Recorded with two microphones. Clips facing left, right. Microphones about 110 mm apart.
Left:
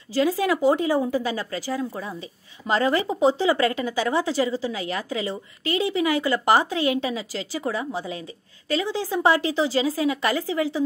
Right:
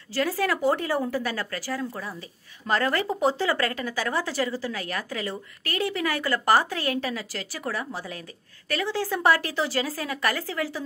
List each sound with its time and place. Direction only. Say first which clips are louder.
0.1 s speech: left 4 dB; 15° left (ahead or behind)